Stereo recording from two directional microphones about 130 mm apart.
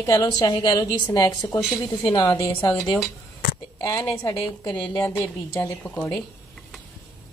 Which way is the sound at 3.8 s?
30° left (ahead or behind).